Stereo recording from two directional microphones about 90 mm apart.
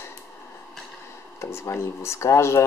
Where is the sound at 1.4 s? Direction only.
30° left (ahead or behind).